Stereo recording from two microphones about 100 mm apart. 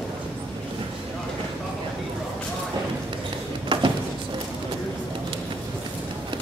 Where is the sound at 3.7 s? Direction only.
55° right (ahead or behind).